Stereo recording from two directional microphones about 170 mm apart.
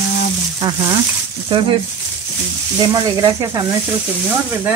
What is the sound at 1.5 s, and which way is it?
Speech, 30° right (ahead or behind).